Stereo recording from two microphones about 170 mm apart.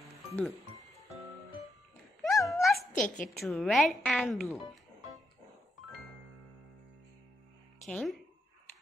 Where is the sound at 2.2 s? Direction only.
Centre (ahead or behind).